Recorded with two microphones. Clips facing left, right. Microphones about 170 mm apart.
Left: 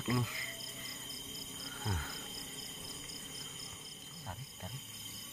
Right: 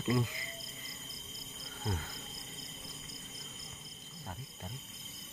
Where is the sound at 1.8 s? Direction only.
5° right (ahead or behind).